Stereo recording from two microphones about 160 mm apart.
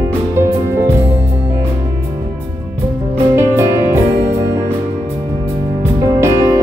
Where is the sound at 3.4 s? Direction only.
15° right (ahead or behind).